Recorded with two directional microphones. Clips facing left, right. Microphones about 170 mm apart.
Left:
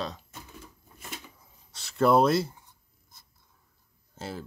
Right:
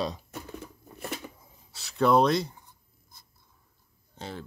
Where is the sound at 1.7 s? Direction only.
Centre (ahead or behind).